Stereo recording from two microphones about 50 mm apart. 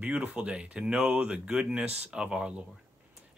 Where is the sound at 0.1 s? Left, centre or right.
Centre.